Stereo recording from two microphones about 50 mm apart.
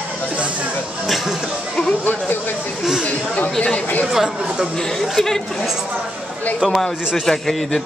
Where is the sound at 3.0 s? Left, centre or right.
Left.